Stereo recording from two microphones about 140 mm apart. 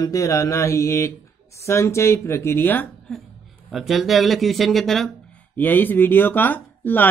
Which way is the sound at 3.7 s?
Centre (ahead or behind).